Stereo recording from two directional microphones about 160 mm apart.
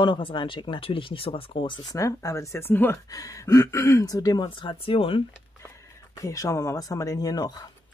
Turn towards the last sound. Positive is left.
turn(degrees=25)  # may be behind; listen again after turning